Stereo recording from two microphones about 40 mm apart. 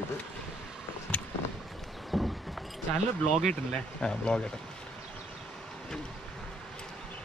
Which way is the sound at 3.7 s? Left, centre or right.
Left.